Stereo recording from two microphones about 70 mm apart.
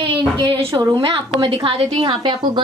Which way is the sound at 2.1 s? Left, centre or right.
Right.